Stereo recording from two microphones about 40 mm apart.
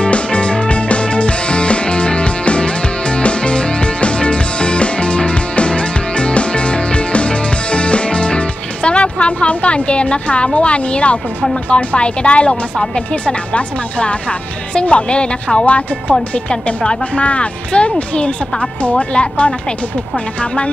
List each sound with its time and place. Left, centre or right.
0.0 s music: left
11.7 s speech: left